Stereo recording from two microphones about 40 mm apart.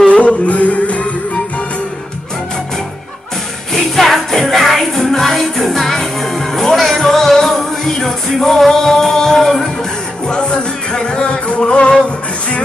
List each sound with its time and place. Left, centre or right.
0.1 s music: left
3.9 s music: centre
10.2 s music: left